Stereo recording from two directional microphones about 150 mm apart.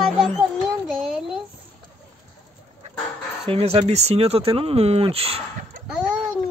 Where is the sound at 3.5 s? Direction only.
40° right (ahead or behind).